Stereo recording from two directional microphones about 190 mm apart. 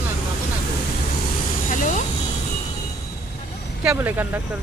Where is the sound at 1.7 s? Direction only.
40° left (ahead or behind).